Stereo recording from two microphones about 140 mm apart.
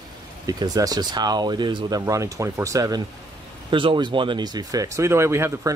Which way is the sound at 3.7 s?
35° right (ahead or behind).